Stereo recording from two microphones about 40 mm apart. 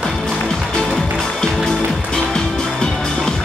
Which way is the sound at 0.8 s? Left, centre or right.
Centre.